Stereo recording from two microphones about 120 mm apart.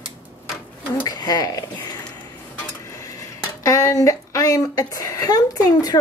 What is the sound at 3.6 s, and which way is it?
A woman's voice, 30° left (ahead or behind).